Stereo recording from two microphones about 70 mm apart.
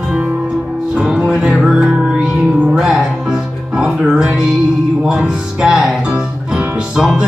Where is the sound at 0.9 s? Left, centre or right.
Centre.